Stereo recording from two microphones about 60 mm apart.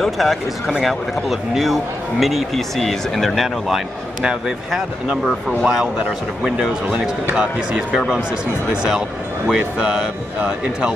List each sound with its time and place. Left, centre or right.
0.0 s speech: centre
4.2 s speech: centre
9.5 s speech: centre